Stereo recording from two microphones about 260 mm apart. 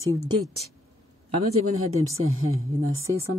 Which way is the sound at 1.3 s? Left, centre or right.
Right.